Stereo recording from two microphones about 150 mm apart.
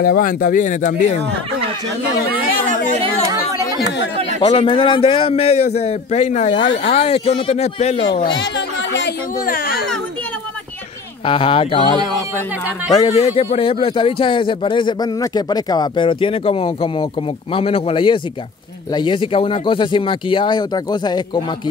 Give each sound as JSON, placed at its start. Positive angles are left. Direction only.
{"t": 0.0, "sound": "speech", "side_deg": 75}
{"t": 2.5, "sound": "speech", "side_deg": 60}
{"t": 4.4, "sound": "speech", "side_deg": 35}
{"t": 8.1, "sound": "speech", "side_deg": 30}
{"t": 9.5, "sound": "speech", "side_deg": 75}
{"t": 11.2, "sound": "speech", "side_deg": 35}
{"t": 13.1, "sound": "speech", "side_deg": 45}